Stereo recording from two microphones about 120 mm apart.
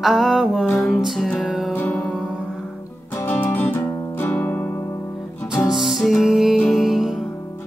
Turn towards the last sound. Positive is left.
turn(degrees=0)  # may be behind; listen again after turning